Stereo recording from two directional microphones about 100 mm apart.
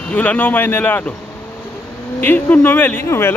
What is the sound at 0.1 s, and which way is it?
Speech, 15° left (ahead or behind).